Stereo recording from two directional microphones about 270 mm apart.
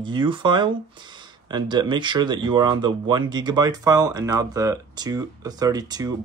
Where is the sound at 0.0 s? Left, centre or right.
Centre.